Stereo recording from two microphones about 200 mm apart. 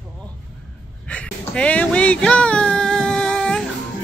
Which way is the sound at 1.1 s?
5° left (ahead or behind).